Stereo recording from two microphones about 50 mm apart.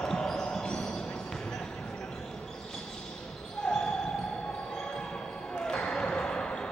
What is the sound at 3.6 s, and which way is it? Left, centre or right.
Basketball bounce, centre.